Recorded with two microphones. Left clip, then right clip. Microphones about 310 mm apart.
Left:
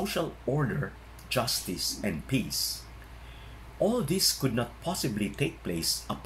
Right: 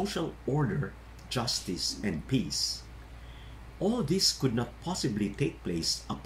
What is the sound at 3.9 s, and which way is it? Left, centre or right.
Speech, centre.